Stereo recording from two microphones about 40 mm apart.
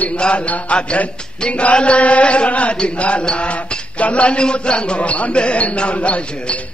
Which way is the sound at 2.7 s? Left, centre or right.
Left.